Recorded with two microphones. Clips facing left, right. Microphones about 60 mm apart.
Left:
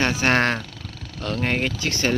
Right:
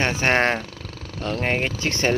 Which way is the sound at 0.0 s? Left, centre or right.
Right.